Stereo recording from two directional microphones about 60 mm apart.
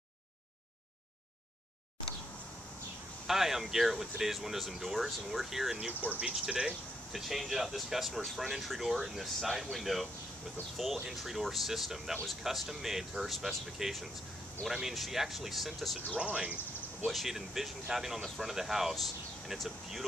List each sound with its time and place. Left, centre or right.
3.3 s speech: centre
11.1 s speech: centre
16.2 s speech: centre
17.0 s speech: centre